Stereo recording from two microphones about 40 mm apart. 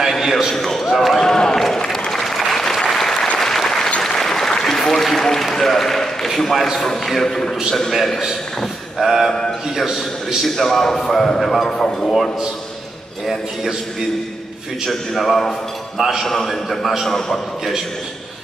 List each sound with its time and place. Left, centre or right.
0.2 s a sound: centre
1.2 s applause: centre
6.2 s a man's voice: centre
8.9 s a man's voice: centre
10.4 s a man's voice: centre
11.7 s a man's voice: centre
14.9 s a man's voice: centre
16.0 s a man's voice: centre
16.3 s a man's voice: centre